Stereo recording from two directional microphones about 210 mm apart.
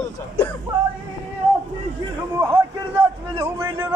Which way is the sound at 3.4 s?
15° right (ahead or behind).